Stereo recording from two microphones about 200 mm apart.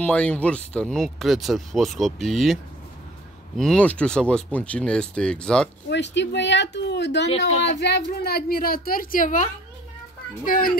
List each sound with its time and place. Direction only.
0.0 s speech: 5° left (ahead or behind)
5.9 s speech: 60° left (ahead or behind)
7.2 s speech: 35° left (ahead or behind)
7.8 s a woman's voice: 55° left (ahead or behind)